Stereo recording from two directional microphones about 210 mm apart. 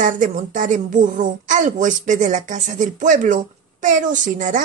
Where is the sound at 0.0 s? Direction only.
40° right (ahead or behind).